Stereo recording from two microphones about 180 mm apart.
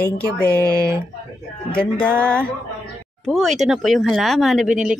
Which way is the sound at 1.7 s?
10° left (ahead or behind).